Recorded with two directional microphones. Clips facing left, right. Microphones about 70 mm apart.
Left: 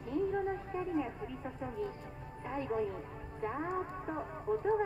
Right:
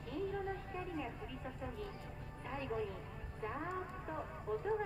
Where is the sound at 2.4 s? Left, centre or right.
Centre.